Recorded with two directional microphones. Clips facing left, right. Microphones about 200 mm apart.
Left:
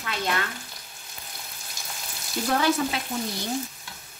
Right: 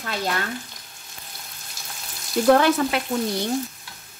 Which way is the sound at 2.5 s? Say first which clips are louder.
Right 7 dB; 65° right (ahead or behind).